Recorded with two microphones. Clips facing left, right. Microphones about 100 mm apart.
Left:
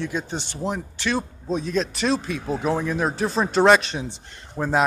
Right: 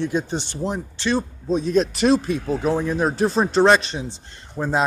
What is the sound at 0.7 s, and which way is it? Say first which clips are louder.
Speech: right 2 dB; 30° right (ahead or behind).